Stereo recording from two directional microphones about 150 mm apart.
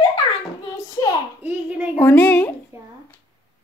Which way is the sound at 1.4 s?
10° right (ahead or behind).